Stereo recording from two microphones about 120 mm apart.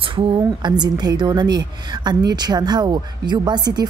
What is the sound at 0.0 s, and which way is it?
A woman's voice, 40° right (ahead or behind).